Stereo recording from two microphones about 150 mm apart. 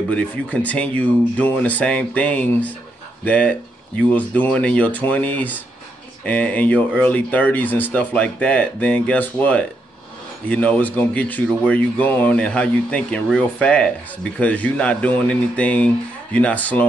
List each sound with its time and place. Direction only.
0.1 s speech: 10° left (ahead or behind)